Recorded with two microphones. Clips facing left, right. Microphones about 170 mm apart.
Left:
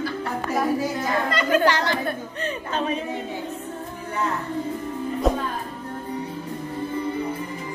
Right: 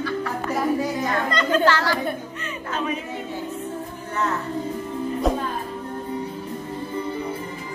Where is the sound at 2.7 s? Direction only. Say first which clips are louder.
Even; 30° left (ahead or behind).